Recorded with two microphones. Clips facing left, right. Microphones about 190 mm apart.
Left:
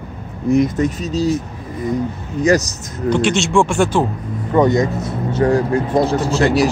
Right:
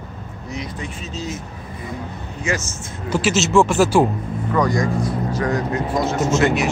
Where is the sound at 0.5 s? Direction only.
45° left (ahead or behind).